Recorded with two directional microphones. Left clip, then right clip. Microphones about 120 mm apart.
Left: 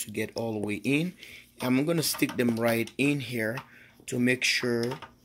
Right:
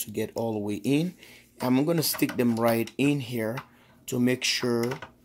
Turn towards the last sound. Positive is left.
turn(degrees=-15)  # may be behind; listen again after turning